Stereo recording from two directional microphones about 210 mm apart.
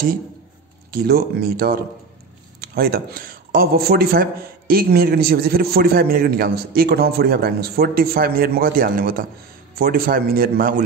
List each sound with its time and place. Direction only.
0.9 s speech: 45° right (ahead or behind)